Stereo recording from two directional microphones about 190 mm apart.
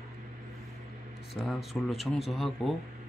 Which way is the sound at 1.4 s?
Centre (ahead or behind).